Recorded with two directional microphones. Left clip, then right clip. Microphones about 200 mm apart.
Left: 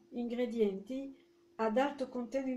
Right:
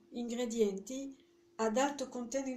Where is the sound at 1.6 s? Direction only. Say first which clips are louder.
Even; 25° left (ahead or behind).